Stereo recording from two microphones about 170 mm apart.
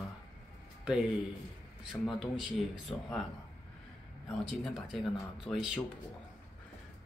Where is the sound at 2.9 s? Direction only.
15° left (ahead or behind).